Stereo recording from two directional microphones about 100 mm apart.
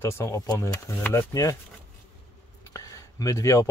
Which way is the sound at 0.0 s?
30° left (ahead or behind).